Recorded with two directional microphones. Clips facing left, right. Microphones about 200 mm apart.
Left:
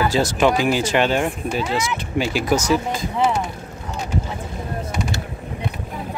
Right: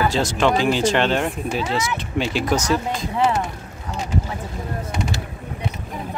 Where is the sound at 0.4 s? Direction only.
10° left (ahead or behind).